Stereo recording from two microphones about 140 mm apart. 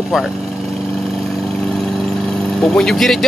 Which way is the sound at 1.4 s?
Centre (ahead or behind).